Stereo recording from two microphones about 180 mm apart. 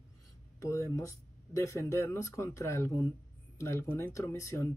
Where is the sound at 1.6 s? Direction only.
15° left (ahead or behind).